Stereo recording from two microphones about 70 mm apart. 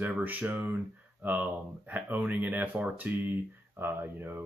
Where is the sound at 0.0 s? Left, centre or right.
Right.